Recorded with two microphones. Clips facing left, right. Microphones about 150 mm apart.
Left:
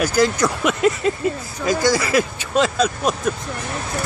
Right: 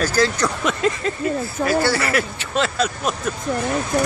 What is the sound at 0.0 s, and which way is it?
Speech, 10° left (ahead or behind).